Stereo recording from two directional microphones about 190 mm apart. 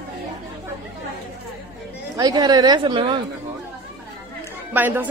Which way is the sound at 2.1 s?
20° right (ahead or behind).